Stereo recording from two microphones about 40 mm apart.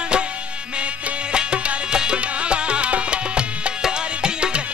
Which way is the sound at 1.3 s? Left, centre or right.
Right.